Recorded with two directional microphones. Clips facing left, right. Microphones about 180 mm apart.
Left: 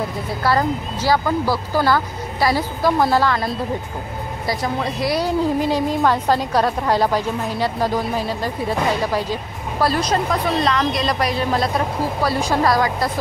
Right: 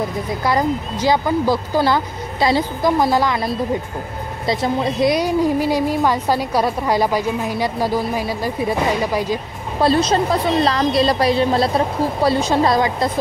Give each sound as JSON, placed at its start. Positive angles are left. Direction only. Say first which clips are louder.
{"t": 0.4, "sound": "a woman's voice", "louder": "even", "side_deg": -15}
{"t": 4.5, "sound": "a woman's voice", "louder": "right 4 dB", "side_deg": -20}
{"t": 9.8, "sound": "a woman's voice", "louder": "right 4 dB", "side_deg": -25}